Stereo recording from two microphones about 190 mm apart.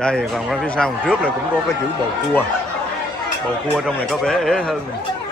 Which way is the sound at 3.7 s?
5° left (ahead or behind).